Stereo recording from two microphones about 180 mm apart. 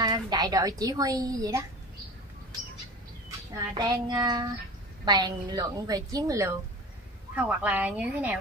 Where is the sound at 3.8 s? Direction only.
25° right (ahead or behind).